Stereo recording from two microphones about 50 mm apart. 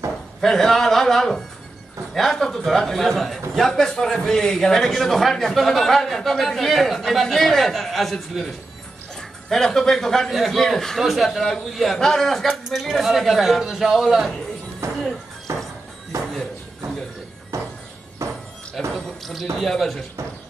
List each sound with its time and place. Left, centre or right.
0.4 s a man's voice: centre
12.4 s a man's voice: centre
14.8 s a sound: right
15.5 s music: right
17.5 s a sound: right
18.2 s music: right
18.9 s a man's voice: centre